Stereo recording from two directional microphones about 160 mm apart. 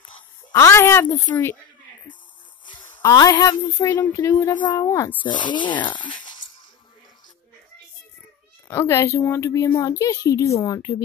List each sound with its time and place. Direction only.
0.5 s speech: 15° left (ahead or behind)
2.6 s a sound: 30° left (ahead or behind)
3.0 s a woman's voice: 20° left (ahead or behind)
5.2 s speech: 30° left (ahead or behind)
8.6 s a woman's voice: 15° left (ahead or behind)